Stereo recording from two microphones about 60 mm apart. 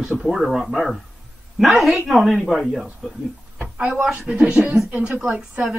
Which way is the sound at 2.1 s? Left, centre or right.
Centre.